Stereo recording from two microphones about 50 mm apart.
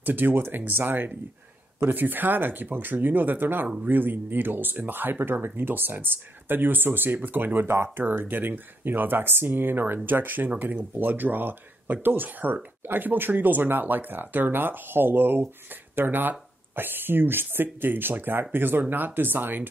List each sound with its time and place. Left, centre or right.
0.0 s speech: right
7.9 s speech: right